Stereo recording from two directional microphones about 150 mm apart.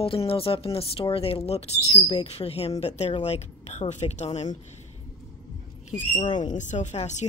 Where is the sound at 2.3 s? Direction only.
40° left (ahead or behind).